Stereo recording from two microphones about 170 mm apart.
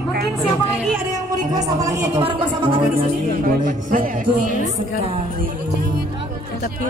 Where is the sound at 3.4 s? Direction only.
55° right (ahead or behind).